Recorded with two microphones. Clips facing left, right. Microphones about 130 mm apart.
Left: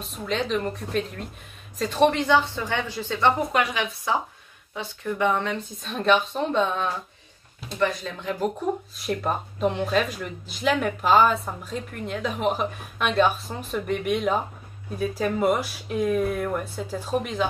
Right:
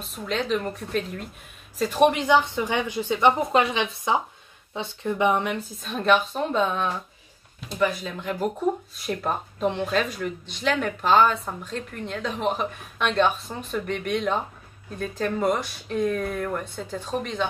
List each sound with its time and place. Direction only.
0.0 s a woman's voice: centre (ahead or behind)
5.8 s speech: centre (ahead or behind)